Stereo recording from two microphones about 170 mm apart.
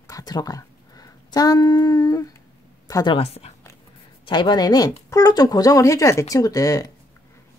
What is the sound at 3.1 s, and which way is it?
Speech, 35° left (ahead or behind).